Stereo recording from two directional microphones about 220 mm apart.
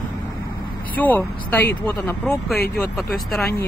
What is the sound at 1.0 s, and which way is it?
Speech, 10° left (ahead or behind).